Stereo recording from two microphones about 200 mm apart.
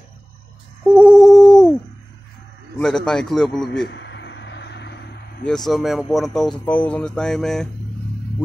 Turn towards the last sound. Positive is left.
turn(degrees=0)  # may be behind; listen again after turning